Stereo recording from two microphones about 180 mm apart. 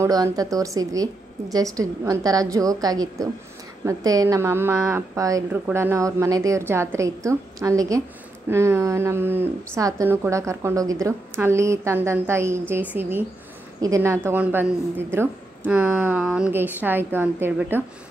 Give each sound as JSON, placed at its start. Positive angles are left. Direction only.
{"t": 0.0, "sound": "a woman's voice", "side_deg": -20}